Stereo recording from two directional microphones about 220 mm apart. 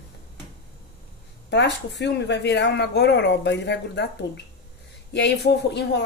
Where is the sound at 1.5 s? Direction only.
50° left (ahead or behind).